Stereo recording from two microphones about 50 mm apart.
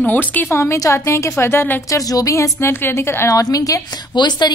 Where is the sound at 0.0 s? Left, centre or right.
Left.